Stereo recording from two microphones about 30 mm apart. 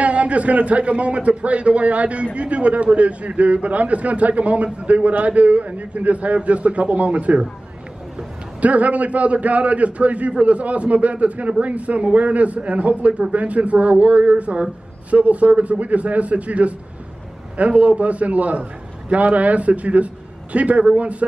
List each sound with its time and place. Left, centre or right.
0.0 s speech: right
8.5 s speech: right